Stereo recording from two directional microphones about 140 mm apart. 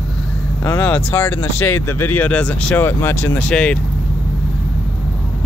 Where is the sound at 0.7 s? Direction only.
10° left (ahead or behind).